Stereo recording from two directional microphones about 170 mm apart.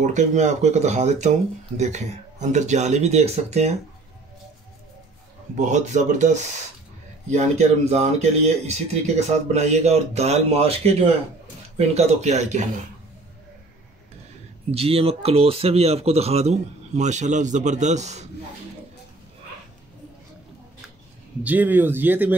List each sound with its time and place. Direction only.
0.0 s speech: 45° right (ahead or behind)
5.6 s speech: 45° right (ahead or behind)
14.7 s speech: 35° right (ahead or behind)
21.4 s speech: 10° right (ahead or behind)